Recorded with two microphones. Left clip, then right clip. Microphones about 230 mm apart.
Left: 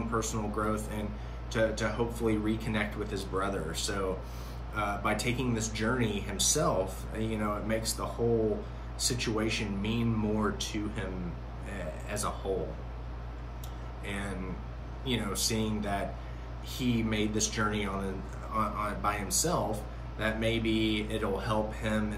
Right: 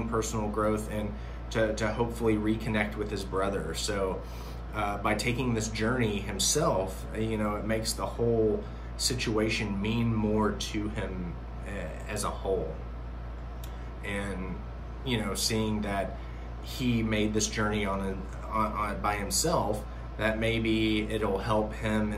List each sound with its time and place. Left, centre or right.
0.1 s speech: centre
12.1 s speech: centre
14.0 s speech: centre